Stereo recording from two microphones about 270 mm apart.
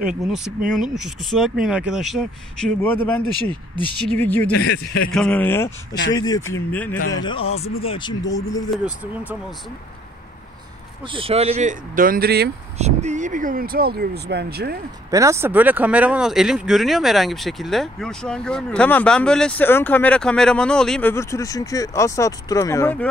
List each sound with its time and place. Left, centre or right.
0.0 s speech: centre
4.2 s speech: centre
7.2 s a man's voice: left
8.6 s speech: centre
11.1 s speech: centre; by 12.4 s right
12.7 s speech: right
15.0 s speech: centre